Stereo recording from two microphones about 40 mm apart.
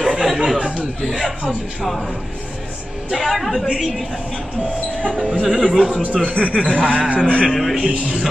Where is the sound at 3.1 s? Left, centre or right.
Centre.